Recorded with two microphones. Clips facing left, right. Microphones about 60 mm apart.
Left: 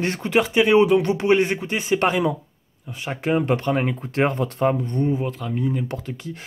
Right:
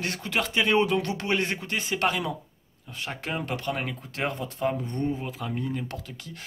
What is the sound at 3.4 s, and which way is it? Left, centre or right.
Speech, left.